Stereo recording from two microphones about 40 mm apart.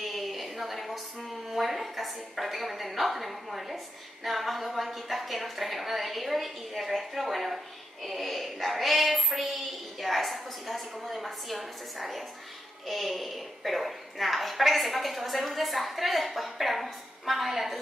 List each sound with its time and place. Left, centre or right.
0.0 s a woman's voice: centre